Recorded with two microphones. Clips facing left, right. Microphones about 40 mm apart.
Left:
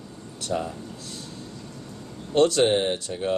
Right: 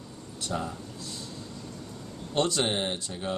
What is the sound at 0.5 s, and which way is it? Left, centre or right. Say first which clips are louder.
Speech: left 5 dB; centre.